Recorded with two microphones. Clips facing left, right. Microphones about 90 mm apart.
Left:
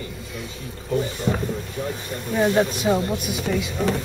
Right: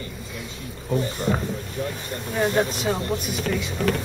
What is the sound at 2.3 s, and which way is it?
Speech, 5° left (ahead or behind).